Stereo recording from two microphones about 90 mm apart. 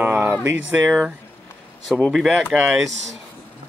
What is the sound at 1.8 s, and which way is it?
Speech, centre (ahead or behind).